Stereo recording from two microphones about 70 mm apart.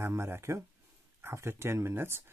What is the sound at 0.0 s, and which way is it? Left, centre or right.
Speech, right.